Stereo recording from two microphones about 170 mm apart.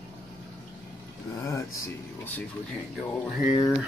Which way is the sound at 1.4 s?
15° left (ahead or behind).